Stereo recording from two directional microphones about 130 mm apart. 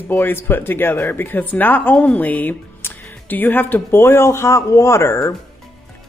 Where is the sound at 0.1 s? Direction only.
15° left (ahead or behind).